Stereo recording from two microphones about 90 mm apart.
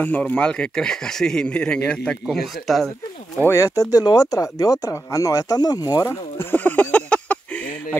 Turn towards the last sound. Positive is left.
turn(degrees=15)  # may be behind; listen again after turning